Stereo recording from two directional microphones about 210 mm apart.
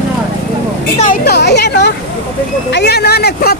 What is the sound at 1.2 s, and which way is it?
Speech, 50° left (ahead or behind).